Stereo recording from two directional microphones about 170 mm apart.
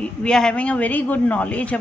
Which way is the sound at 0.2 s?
5° left (ahead or behind).